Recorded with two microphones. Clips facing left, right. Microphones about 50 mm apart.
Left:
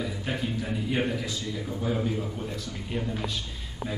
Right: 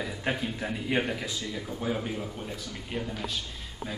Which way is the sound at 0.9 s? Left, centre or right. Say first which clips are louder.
Even; centre.